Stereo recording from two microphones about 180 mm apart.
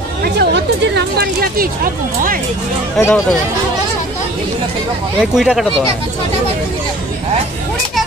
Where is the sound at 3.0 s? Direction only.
5° left (ahead or behind).